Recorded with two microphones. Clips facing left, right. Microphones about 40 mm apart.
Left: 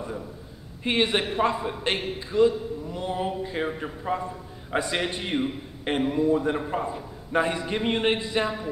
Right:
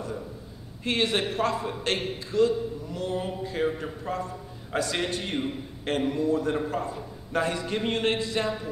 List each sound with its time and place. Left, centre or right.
0.8 s a man's voice: centre